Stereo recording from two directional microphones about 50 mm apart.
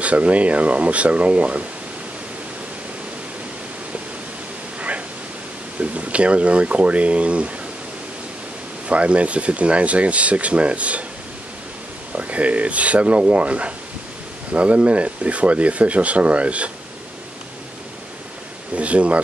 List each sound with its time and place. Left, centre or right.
0.0 s speech: right
4.7 s a sound: right
5.8 s speech: right
8.8 s speech: right
12.2 s speech: right
18.8 s speech: right